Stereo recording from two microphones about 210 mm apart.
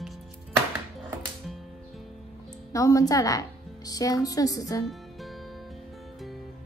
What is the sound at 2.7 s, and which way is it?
A woman's voice, 15° left (ahead or behind).